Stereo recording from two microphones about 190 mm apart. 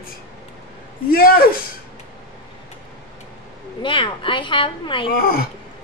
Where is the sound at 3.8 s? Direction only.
25° left (ahead or behind).